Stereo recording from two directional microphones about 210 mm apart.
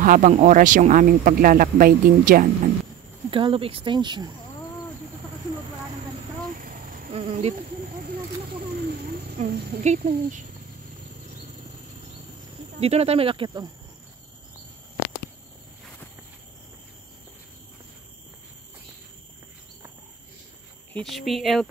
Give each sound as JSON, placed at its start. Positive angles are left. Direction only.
{"t": 0.0, "sound": "speech", "side_deg": -40}
{"t": 3.3, "sound": "speech", "side_deg": -25}
{"t": 6.5, "sound": "a sound", "side_deg": -40}
{"t": 8.5, "sound": "a sound", "side_deg": -45}
{"t": 9.9, "sound": "speech", "side_deg": -45}
{"t": 12.8, "sound": "speech", "side_deg": -30}
{"t": 20.9, "sound": "speech", "side_deg": 0}